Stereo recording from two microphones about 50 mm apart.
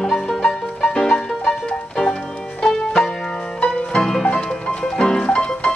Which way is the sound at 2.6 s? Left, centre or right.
Centre.